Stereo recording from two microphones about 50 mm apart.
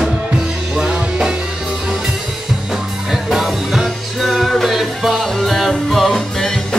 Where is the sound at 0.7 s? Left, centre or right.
Centre.